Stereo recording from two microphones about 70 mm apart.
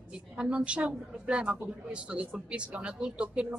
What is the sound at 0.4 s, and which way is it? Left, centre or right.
Speech, centre.